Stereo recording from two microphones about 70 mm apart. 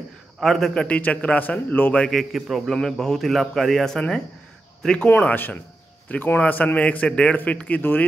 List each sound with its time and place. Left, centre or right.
0.4 s a man's voice: centre
0.8 s a man's voice: centre
2.0 s a man's voice: centre
5.2 s a man's voice: left